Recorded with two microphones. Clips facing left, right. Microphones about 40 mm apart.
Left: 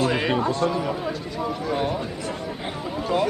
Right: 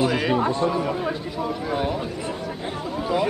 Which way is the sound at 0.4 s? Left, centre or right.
Right.